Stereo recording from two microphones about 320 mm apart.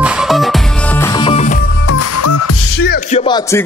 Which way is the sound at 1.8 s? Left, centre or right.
Left.